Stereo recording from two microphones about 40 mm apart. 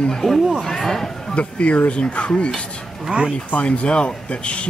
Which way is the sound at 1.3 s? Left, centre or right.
Left.